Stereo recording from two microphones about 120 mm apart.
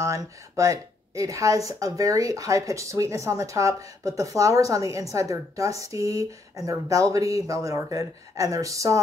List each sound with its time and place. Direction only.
0.0 s speech: 25° right (ahead or behind)